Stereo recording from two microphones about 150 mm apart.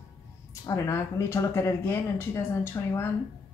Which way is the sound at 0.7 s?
20° left (ahead or behind).